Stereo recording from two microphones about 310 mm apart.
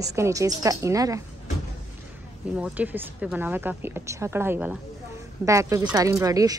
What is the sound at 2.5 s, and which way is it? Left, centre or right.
Speech, centre.